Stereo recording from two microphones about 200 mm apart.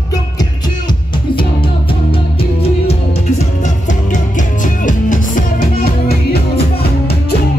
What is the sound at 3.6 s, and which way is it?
Music, 40° left (ahead or behind).